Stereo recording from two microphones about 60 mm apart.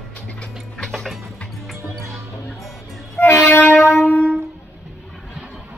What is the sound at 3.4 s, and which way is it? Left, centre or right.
Music, left.